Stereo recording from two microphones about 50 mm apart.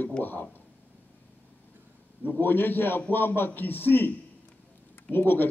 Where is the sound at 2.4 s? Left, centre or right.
Left.